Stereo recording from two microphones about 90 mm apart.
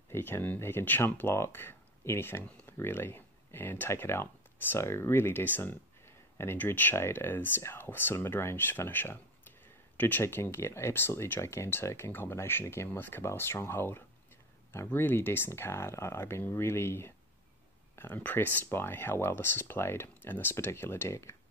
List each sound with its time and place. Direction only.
0.1 s speech: 25° left (ahead or behind)